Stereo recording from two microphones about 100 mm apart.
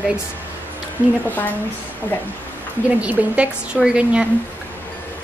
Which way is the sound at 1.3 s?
15° left (ahead or behind).